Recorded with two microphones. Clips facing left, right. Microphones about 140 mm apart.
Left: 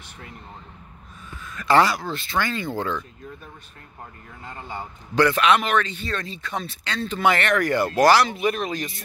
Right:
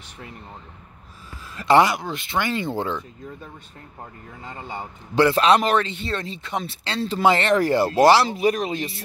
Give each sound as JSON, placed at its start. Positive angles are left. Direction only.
{"t": 1.5, "sound": "a man's voice", "side_deg": -25}
{"t": 4.6, "sound": "a man's voice", "side_deg": -20}